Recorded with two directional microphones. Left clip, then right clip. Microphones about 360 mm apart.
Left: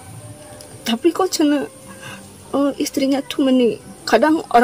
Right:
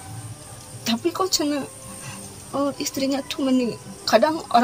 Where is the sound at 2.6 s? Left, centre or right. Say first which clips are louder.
Left 5 dB; centre.